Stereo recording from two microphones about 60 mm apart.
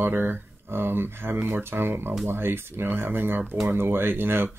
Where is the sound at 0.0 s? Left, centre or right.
Right.